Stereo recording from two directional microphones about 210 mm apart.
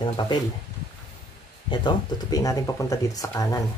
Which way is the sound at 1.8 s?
15° left (ahead or behind).